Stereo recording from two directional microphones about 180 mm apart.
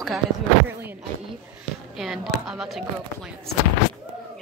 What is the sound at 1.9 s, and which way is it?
Speech, centre (ahead or behind).